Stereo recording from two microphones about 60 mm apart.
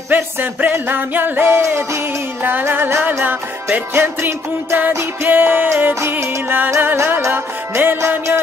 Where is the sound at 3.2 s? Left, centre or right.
Right.